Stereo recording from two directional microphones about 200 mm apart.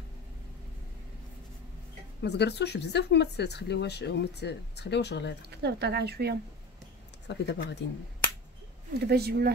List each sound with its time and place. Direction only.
2.2 s speech: 55° left (ahead or behind)
5.5 s speech: 55° right (ahead or behind)
7.2 s speech: 60° left (ahead or behind)
9.0 s speech: 55° right (ahead or behind)